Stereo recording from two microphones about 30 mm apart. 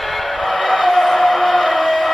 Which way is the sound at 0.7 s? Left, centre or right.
Centre.